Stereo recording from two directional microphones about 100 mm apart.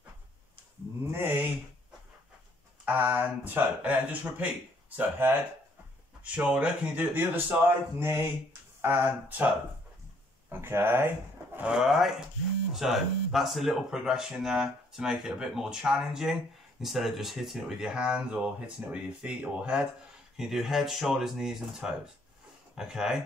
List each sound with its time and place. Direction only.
1.1 s a sound: 20° right (ahead or behind)
2.8 s speech: 15° right (ahead or behind)
10.5 s speech: 25° right (ahead or behind)
11.7 s speech: 5° right (ahead or behind)